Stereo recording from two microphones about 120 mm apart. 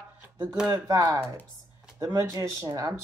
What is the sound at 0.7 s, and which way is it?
Speech, 30° right (ahead or behind).